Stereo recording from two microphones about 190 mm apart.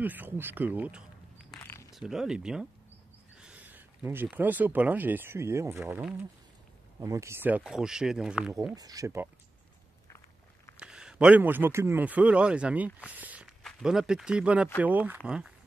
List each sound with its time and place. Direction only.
0.0 s speech: 10° right (ahead or behind)
1.5 s a sound: 10° left (ahead or behind)
2.0 s speech: centre (ahead or behind)
8.7 s speech: 20° right (ahead or behind)
10.8 s a man's voice: 5° right (ahead or behind)
13.2 s walk: 5° right (ahead or behind)
13.6 s speech: centre (ahead or behind)